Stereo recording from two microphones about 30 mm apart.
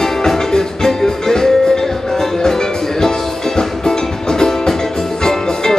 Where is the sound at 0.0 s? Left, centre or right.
Centre.